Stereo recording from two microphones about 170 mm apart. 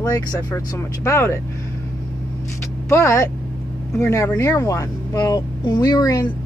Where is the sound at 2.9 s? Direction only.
15° left (ahead or behind).